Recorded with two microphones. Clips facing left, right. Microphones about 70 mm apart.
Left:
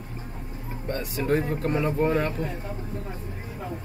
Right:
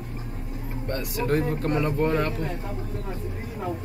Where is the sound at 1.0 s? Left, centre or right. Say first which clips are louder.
Even; left.